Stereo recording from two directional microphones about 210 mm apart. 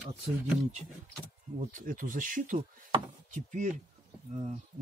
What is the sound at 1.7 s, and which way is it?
Speech, 40° right (ahead or behind).